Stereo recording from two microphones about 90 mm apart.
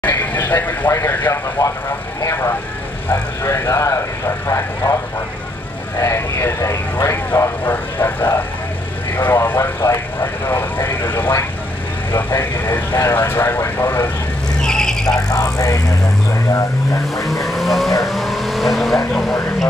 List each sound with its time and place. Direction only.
0.0 s vehicle: 20° left (ahead or behind)
5.9 s vehicle: 30° left (ahead or behind)
14.6 s vehicle: 5° left (ahead or behind)
15.1 s speech: 40° left (ahead or behind)
17.1 s vehicle: centre (ahead or behind)